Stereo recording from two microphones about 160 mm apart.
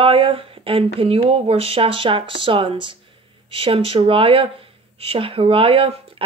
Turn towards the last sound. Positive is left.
turn(degrees=-35)  # may be behind; listen again after turning